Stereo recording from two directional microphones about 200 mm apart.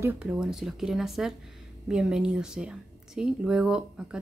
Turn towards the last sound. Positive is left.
turn(degrees=-5)  # may be behind; listen again after turning